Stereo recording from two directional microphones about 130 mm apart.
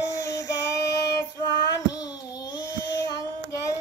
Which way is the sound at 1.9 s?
30° left (ahead or behind).